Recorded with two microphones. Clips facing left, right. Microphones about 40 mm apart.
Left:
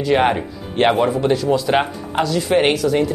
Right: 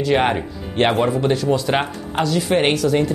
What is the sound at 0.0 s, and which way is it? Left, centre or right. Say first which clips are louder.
Speech: left 1 dB; centre.